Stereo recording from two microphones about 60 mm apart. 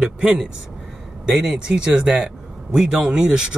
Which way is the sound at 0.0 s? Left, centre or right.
Centre.